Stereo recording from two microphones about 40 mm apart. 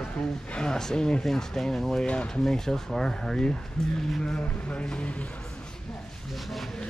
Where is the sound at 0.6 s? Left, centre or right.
Centre.